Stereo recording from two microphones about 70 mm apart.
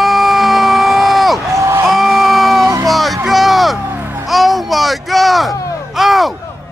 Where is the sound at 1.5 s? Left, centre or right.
Right.